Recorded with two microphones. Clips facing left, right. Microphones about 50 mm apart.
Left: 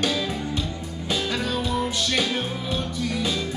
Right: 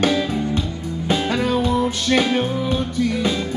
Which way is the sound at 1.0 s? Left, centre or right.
Right.